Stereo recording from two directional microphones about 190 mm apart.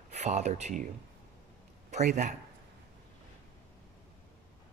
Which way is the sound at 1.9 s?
40° right (ahead or behind).